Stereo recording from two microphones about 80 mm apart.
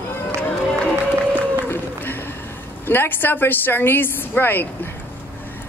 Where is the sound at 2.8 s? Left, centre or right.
Left.